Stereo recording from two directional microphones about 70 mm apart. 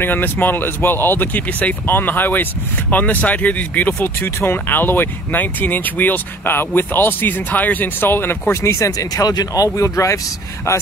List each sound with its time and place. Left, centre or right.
0.0 s speech: left
8.6 s speech: left